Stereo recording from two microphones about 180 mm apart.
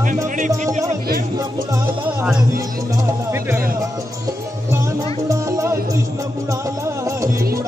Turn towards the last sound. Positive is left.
turn(degrees=-15)  # may be behind; listen again after turning